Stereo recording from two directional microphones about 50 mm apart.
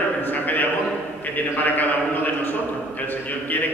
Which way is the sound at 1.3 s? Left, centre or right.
Left.